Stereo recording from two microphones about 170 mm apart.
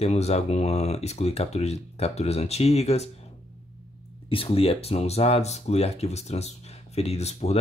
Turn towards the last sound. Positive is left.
turn(degrees=40)  # may be behind; listen again after turning